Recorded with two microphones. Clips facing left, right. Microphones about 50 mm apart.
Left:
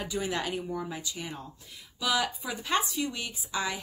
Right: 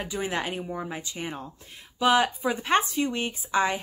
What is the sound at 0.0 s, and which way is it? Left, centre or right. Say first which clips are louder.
A woman's voice: right 2 dB; right.